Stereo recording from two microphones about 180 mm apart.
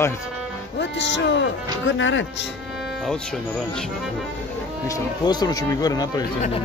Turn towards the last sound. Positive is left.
turn(degrees=20)  # may be behind; listen again after turning